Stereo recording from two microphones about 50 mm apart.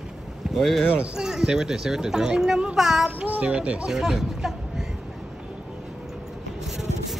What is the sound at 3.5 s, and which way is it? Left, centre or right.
Speech, right.